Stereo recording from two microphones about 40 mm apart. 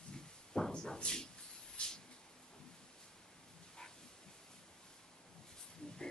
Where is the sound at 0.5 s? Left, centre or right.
Centre.